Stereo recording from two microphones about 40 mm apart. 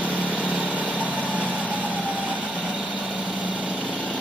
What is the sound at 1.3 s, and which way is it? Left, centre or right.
Vehicle, left.